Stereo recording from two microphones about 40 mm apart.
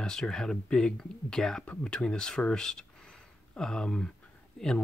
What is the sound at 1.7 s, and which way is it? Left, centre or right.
Speech, left.